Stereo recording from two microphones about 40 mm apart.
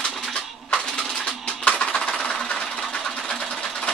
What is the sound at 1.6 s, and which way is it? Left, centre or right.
Music, left.